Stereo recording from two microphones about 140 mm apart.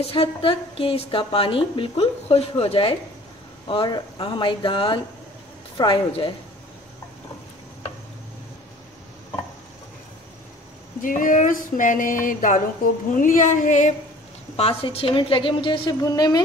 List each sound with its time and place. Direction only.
0.0 s a woman's voice: 45° left (ahead or behind)
11.0 s speech: 75° left (ahead or behind)
14.6 s a woman's voice: 45° left (ahead or behind)